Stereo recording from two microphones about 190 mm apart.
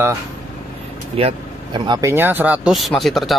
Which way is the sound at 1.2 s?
30° right (ahead or behind).